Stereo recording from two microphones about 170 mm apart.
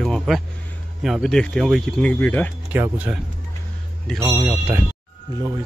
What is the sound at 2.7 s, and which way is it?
Speech, 10° right (ahead or behind).